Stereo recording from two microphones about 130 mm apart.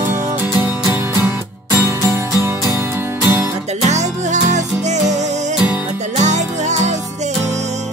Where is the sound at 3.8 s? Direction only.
65° right (ahead or behind).